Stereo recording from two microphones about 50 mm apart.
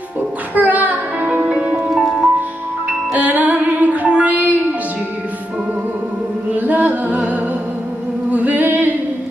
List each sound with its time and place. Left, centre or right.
0.6 s music: right
1.4 s music: centre
2.9 s music: right
6.5 s music: right
8.3 s music: right